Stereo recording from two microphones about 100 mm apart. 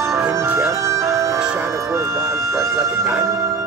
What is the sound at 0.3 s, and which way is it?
Music, 25° right (ahead or behind).